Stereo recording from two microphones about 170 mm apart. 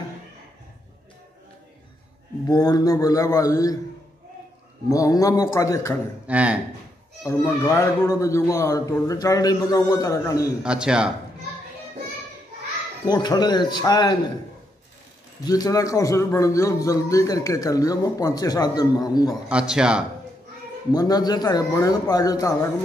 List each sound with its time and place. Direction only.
2.4 s a man's voice: 20° left (ahead or behind)
4.8 s a man's voice: 20° left (ahead or behind)
6.2 s speech: 10° right (ahead or behind)
7.2 s a man's voice: 15° left (ahead or behind)
10.6 s speech: 5° right (ahead or behind)
13.0 s a man's voice: 25° left (ahead or behind)
15.4 s a man's voice: 20° left (ahead or behind)
19.5 s speech: 5° right (ahead or behind)
20.9 s a man's voice: 20° left (ahead or behind)